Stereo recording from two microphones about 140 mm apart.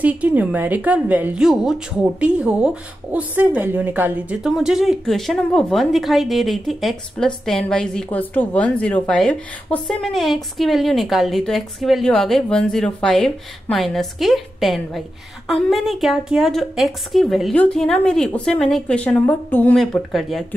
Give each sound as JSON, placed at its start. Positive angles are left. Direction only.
{"t": 0.0, "sound": "a woman's voice", "side_deg": -10}
{"t": 19.8, "sound": "a woman's voice", "side_deg": 0}